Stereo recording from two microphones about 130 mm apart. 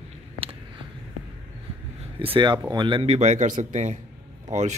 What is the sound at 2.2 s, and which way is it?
Speech, 40° right (ahead or behind).